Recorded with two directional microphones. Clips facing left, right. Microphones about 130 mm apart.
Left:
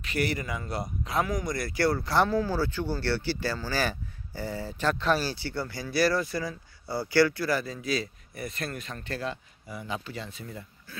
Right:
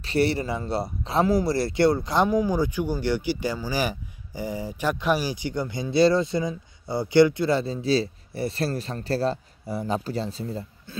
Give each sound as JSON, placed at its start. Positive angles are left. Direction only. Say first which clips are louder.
{"t": 0.0, "sound": "a man's voice", "louder": "right 7 dB", "side_deg": -30}